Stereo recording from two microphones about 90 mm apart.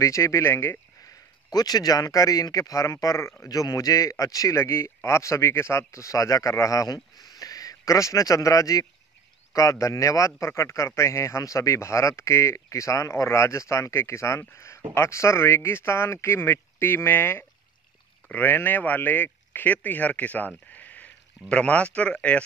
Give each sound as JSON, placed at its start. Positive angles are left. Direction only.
{"t": 0.0, "sound": "speech", "side_deg": 35}
{"t": 1.5, "sound": "a man's voice", "side_deg": 45}
{"t": 3.4, "sound": "a man's voice", "side_deg": 45}